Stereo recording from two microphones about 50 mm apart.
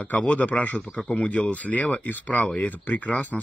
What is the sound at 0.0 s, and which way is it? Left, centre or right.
Speech, left.